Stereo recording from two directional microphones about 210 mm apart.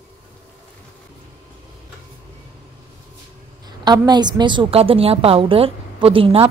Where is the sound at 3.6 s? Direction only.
20° right (ahead or behind).